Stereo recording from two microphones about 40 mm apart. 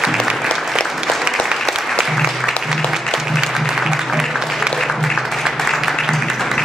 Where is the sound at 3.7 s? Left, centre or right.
Centre.